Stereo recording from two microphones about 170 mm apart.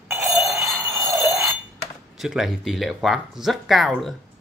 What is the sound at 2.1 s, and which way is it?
Speech, centre (ahead or behind).